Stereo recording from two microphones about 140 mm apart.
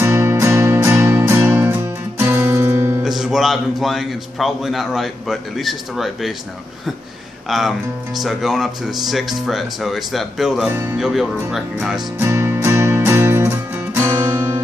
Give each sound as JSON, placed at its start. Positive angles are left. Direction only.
{"t": 0.0, "sound": "music", "side_deg": -20}
{"t": 3.0, "sound": "speech", "side_deg": -5}
{"t": 7.4, "sound": "speech", "side_deg": 0}
{"t": 10.7, "sound": "speech", "side_deg": -15}
{"t": 11.0, "sound": "speech", "side_deg": -5}
{"t": 12.2, "sound": "music", "side_deg": -20}
{"t": 13.9, "sound": "guitar", "side_deg": -20}